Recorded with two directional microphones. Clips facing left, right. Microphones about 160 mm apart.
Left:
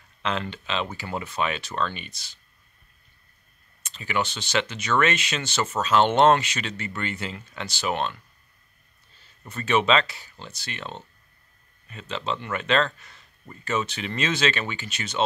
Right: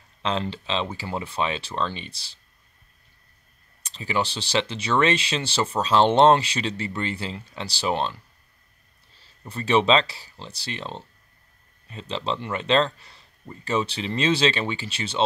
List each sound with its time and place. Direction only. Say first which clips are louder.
0.2 s speech: right 2 dB; 30° right (ahead or behind)
3.8 s speech: right 1 dB; 30° right (ahead or behind)
9.5 s speech: right 2 dB; 30° right (ahead or behind)